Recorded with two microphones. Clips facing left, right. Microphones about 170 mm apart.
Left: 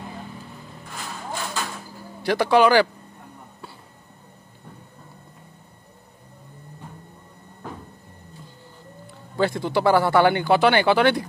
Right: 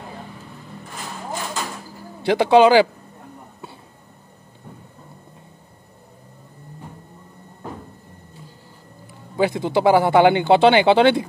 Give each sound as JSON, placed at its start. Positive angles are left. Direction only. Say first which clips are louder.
{"t": 2.2, "sound": "speech", "louder": "right 4 dB", "side_deg": -20}
{"t": 9.4, "sound": "speech", "louder": "right 3 dB", "side_deg": -15}